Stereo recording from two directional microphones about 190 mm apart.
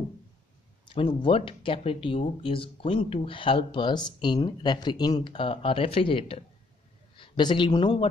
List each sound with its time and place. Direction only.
0.8 s speech: 25° left (ahead or behind)